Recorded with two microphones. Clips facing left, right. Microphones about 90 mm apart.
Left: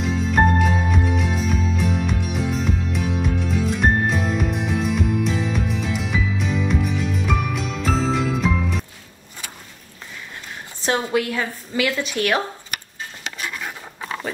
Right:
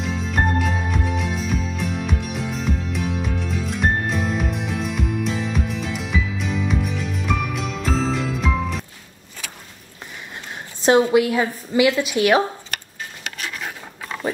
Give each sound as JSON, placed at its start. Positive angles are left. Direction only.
{"t": 0.0, "sound": "music", "side_deg": 0}
{"t": 10.8, "sound": "a sound", "side_deg": -20}
{"t": 11.1, "sound": "a woman's voice", "side_deg": -15}